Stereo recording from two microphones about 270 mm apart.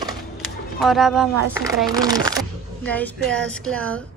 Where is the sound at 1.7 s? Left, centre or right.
Centre.